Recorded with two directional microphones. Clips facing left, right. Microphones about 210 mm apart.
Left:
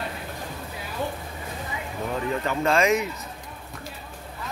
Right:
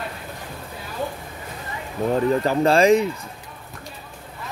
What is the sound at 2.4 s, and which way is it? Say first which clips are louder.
Speech: right 4 dB; 35° right (ahead or behind).